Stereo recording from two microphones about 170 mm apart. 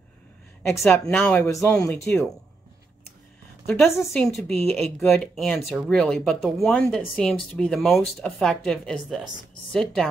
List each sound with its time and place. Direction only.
0.7 s speech: 5° left (ahead or behind)
1.4 s speech: 15° left (ahead or behind)
3.6 s speech: 5° left (ahead or behind)